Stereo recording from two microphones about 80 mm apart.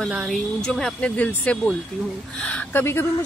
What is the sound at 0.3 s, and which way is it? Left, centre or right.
Speech, centre.